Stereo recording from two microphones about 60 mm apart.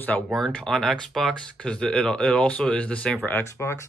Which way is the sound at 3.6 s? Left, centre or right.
Left.